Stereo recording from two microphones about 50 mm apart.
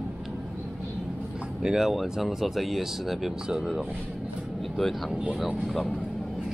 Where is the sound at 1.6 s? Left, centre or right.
Centre.